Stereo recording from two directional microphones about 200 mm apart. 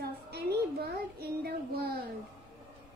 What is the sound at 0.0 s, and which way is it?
Child singing, 55° right (ahead or behind).